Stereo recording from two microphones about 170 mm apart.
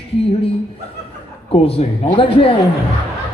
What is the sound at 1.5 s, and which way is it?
A man's voice, 35° left (ahead or behind).